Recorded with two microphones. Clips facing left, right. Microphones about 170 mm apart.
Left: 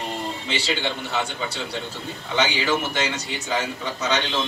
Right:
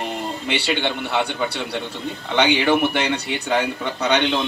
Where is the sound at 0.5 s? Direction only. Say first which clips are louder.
Right 4 dB; 65° right (ahead or behind).